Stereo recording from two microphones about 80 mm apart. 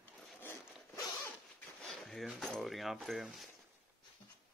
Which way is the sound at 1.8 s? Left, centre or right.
Centre.